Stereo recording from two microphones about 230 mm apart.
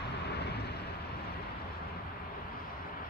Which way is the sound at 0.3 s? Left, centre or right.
Left.